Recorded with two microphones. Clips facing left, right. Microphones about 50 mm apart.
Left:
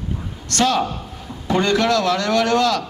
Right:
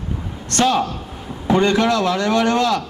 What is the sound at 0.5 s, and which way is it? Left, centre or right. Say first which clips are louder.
A man's voice: right 1 dB; right.